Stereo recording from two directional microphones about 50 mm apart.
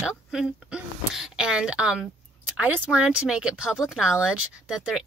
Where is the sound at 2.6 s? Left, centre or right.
Right.